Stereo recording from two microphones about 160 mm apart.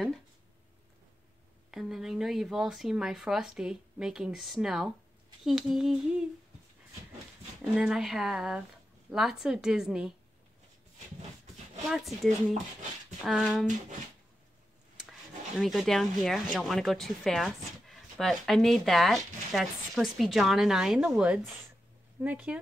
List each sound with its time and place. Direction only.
1.7 s speech: centre (ahead or behind)
7.7 s speech: 5° right (ahead or behind)
11.9 s speech: centre (ahead or behind)
15.6 s speech: centre (ahead or behind)